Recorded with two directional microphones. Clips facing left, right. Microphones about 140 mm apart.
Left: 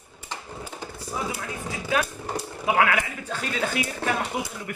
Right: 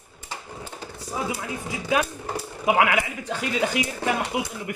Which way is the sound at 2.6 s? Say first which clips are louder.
Right 2 dB; 20° right (ahead or behind).